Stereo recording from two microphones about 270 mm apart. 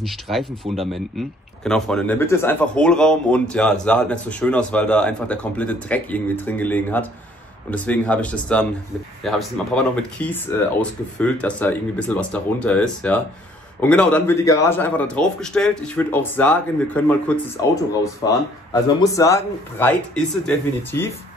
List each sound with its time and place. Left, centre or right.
0.0 s a man's voice: centre
18.2 s a man's voice: centre